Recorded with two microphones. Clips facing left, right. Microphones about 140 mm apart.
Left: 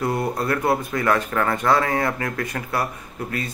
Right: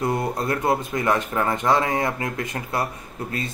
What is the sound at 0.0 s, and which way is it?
Speech, 20° right (ahead or behind).